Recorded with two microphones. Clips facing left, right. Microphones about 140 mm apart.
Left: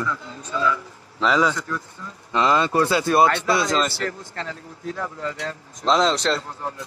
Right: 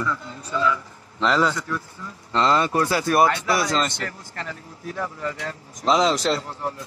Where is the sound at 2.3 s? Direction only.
10° left (ahead or behind).